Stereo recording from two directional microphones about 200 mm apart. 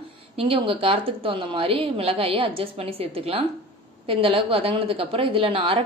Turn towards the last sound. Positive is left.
turn(degrees=-25)  # may be behind; listen again after turning